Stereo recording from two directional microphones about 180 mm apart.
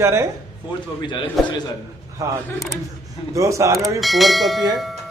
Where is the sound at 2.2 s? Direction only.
20° right (ahead or behind).